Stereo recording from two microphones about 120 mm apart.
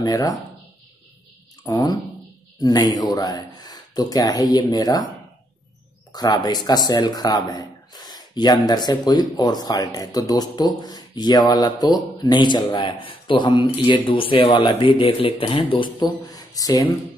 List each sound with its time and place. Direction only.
0.0 s speech: 30° left (ahead or behind)
1.6 s speech: 35° left (ahead or behind)
6.1 s speech: 35° left (ahead or behind)